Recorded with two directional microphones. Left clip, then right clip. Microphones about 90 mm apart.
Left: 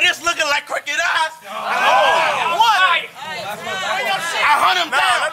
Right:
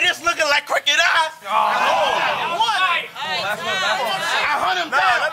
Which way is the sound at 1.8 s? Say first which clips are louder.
Left 4 dB; 20° left (ahead or behind).